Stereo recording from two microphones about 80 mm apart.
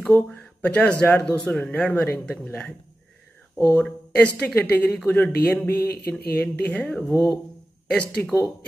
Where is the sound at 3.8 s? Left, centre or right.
Centre.